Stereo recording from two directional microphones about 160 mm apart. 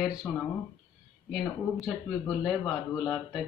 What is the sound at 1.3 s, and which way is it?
Speech, 5° right (ahead or behind).